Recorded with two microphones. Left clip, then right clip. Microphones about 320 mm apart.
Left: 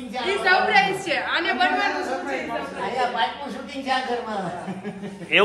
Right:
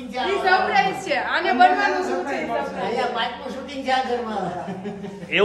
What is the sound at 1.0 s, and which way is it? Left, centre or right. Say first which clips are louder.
Speech: right 1 dB; right.